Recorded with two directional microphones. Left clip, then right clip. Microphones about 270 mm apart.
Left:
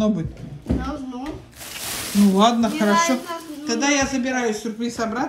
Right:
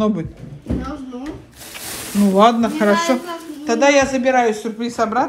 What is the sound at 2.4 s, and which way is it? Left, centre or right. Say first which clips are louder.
A woman's voice: right 6 dB; centre.